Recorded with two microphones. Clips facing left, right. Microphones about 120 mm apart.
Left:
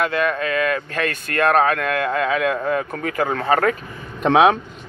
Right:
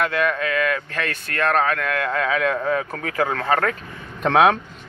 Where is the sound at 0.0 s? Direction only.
Centre (ahead or behind).